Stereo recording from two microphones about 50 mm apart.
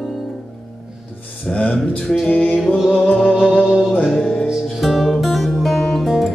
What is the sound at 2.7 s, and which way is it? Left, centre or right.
Music, centre.